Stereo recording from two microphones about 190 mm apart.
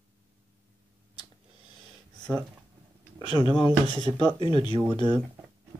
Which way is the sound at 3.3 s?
30° left (ahead or behind).